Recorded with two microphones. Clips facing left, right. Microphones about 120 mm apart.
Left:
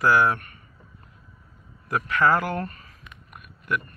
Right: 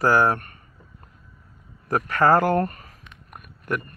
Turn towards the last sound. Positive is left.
turn(degrees=-45)  # may be behind; listen again after turning